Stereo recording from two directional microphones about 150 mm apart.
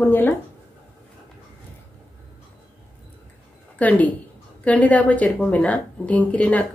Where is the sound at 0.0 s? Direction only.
10° left (ahead or behind).